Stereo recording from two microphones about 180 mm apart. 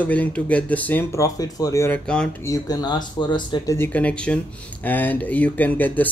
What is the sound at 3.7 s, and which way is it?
Speech, 10° left (ahead or behind).